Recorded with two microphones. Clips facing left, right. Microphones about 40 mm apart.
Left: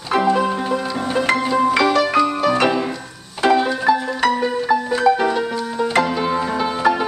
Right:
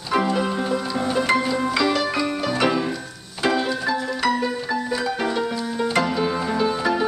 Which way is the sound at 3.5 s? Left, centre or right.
Centre.